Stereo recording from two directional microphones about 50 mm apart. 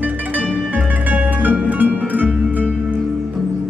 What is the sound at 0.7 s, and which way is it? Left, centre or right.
Music, right.